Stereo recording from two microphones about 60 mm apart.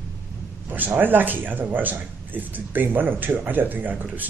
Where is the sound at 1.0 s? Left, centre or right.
Right.